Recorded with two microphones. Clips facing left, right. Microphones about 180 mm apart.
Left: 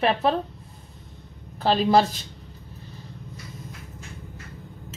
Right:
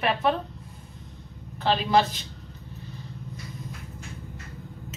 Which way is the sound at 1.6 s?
35° left (ahead or behind).